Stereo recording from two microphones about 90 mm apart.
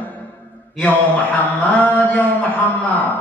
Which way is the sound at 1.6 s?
20° left (ahead or behind).